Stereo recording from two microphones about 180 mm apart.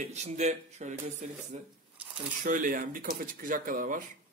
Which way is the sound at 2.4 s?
45° right (ahead or behind).